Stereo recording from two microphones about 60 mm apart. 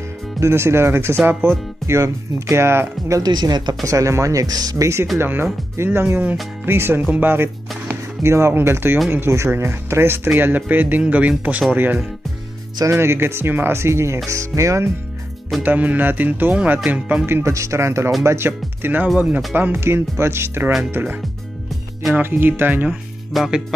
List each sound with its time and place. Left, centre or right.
0.4 s speech: right
3.1 s speech: right
5.2 s speech: right
12.9 s speech: right
15.6 s speech: right
17.3 s speech: right
19.1 s speech: right
19.5 s speech: right
20.9 s speech: right
22.8 s music: centre